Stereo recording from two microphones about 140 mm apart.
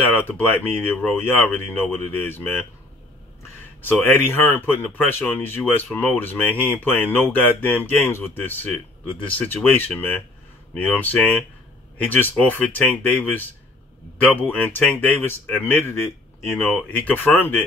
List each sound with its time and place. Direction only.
0.1 s speech: 15° left (ahead or behind)
3.8 s speech: 15° left (ahead or behind)